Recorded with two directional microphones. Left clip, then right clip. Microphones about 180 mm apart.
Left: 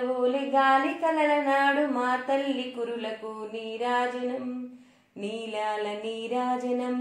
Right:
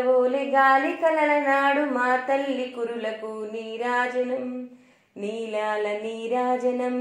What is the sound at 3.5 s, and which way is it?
Speech, 20° right (ahead or behind).